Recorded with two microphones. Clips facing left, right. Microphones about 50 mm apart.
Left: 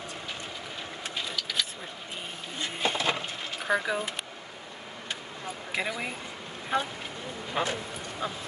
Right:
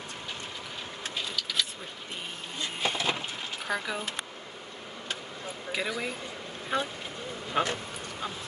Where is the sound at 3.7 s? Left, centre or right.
Centre.